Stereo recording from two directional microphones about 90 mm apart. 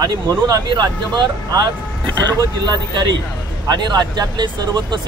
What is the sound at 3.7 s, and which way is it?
Speech, 55° right (ahead or behind).